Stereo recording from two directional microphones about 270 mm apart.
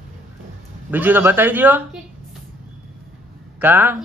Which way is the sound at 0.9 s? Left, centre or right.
Centre.